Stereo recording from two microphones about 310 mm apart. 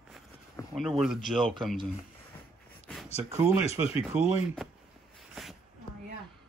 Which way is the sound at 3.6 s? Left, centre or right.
Centre.